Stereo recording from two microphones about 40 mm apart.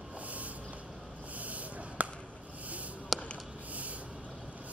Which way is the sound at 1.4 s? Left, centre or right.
Right.